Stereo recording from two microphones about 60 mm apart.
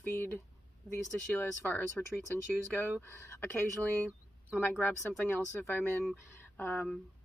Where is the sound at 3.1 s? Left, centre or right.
Left.